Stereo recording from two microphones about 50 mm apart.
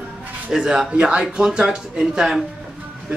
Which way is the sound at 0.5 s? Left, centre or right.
Centre.